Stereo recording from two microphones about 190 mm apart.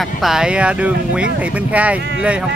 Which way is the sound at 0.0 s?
Centre (ahead or behind).